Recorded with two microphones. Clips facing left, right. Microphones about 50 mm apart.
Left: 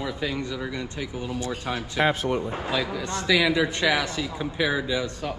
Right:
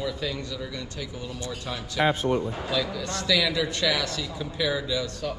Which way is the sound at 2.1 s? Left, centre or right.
Left.